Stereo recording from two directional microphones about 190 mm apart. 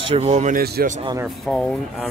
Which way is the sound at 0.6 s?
50° right (ahead or behind).